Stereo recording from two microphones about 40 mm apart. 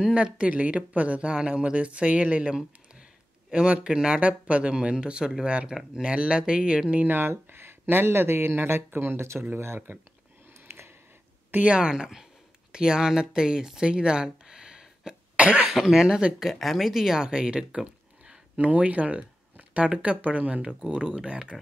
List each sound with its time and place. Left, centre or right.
0.1 s speech: right
0.5 s speech: right
1.3 s a man's voice: right
7.1 s speech: right
11.6 s a man's voice: right
13.8 s a sound: right
15.3 s speech: right
15.7 s speech: centre
18.6 s speech: right
20.8 s a man's voice: right